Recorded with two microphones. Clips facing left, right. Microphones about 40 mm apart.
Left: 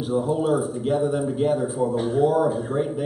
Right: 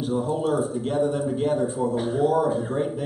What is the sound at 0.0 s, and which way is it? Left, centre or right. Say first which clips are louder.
A man's voice: left 2 dB; centre.